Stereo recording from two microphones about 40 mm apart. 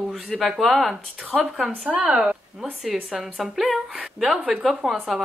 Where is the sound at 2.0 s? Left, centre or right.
Centre.